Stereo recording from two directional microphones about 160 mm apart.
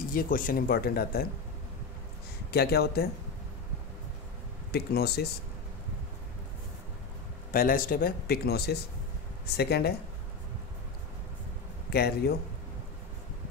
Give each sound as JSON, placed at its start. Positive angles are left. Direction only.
{"t": 0.1, "sound": "speech", "side_deg": 60}
{"t": 2.5, "sound": "speech", "side_deg": 80}
{"t": 4.7, "sound": "speech", "side_deg": 80}
{"t": 7.5, "sound": "speech", "side_deg": 60}
{"t": 11.9, "sound": "speech", "side_deg": 80}